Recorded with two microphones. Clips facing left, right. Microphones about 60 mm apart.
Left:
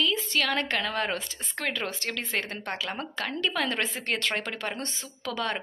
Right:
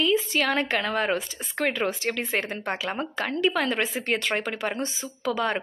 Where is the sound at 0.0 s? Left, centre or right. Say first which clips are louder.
Right 4 dB; centre.